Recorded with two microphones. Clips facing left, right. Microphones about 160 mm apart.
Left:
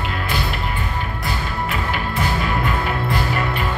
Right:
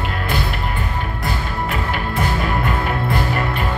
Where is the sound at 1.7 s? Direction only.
50° right (ahead or behind).